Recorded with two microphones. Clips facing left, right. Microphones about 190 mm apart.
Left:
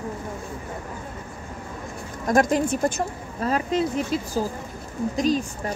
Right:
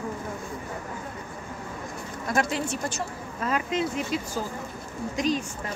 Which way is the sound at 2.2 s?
45° left (ahead or behind).